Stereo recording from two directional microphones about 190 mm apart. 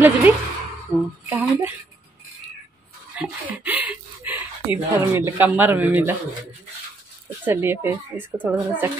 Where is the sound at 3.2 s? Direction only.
10° right (ahead or behind).